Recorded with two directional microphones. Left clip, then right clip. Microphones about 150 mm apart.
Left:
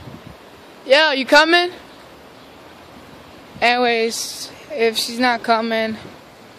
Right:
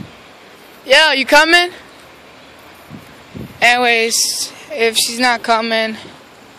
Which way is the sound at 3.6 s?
10° left (ahead or behind).